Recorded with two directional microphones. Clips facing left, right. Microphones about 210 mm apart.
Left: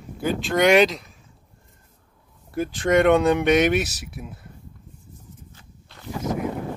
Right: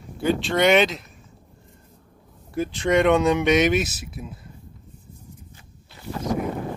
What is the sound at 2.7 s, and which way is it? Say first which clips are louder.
Speech: left 1 dB; 50° left (ahead or behind).